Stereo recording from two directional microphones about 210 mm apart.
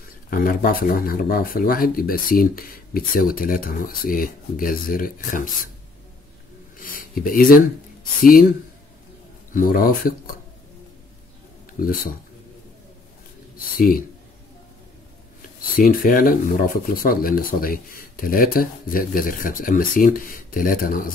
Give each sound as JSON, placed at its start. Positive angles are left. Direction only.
{"t": 0.3, "sound": "speech", "side_deg": 40}
{"t": 6.8, "sound": "a sound", "side_deg": 40}
{"t": 8.2, "sound": "speech", "side_deg": 40}
{"t": 9.5, "sound": "speech", "side_deg": 40}
{"t": 13.7, "sound": "speech", "side_deg": 45}
{"t": 15.8, "sound": "speech", "side_deg": 40}